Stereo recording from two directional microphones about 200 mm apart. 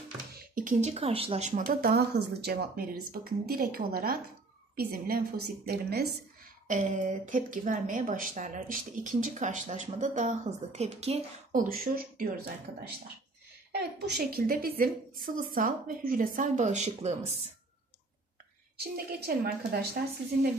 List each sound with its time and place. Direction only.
0.4 s speech: 40° right (ahead or behind)
6.7 s a woman's voice: 40° right (ahead or behind)
11.6 s speech: 45° right (ahead or behind)
13.7 s speech: 55° right (ahead or behind); by 17.4 s 35° right (ahead or behind)
18.8 s speech: 50° right (ahead or behind)